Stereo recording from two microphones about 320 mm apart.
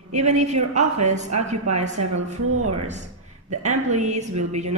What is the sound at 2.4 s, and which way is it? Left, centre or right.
Speech, right.